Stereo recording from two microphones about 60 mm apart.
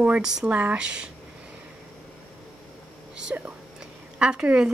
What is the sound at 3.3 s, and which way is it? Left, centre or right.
Speech, right.